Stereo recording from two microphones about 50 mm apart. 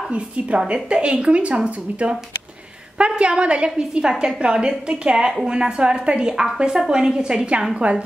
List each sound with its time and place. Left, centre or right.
0.8 s a woman's voice: centre